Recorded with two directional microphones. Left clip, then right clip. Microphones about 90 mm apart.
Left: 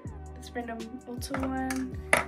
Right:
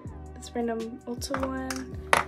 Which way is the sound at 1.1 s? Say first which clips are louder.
Right 2 dB; 50° right (ahead or behind).